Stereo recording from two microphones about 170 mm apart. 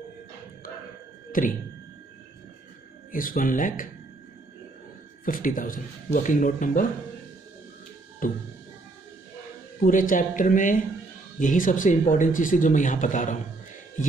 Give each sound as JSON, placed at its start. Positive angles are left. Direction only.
{"t": 1.4, "sound": "speech", "side_deg": 55}
{"t": 3.1, "sound": "speech", "side_deg": 55}
{"t": 5.2, "sound": "speech", "side_deg": 55}
{"t": 8.2, "sound": "speech", "side_deg": 55}
{"t": 9.8, "sound": "speech", "side_deg": 50}